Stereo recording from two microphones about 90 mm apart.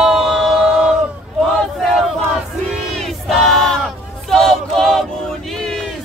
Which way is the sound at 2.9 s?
5° left (ahead or behind).